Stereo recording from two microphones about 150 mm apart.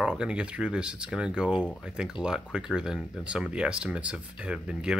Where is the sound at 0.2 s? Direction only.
5° right (ahead or behind).